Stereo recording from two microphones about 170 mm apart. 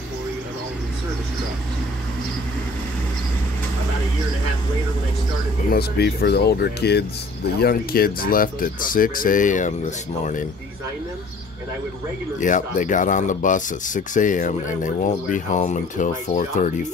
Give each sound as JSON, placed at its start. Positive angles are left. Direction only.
{"t": 5.7, "sound": "speech", "side_deg": 70}
{"t": 7.6, "sound": "speech", "side_deg": 60}
{"t": 12.4, "sound": "speech", "side_deg": 50}